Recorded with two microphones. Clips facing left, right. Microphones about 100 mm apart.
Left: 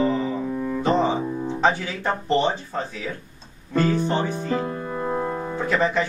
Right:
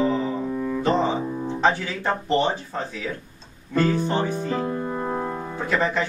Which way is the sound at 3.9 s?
5° right (ahead or behind).